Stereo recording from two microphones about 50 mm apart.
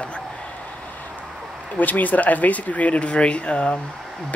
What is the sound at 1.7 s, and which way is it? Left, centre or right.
Speech, left.